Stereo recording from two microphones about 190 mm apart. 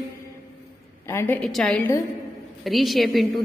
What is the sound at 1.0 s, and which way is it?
A woman's voice, 10° left (ahead or behind).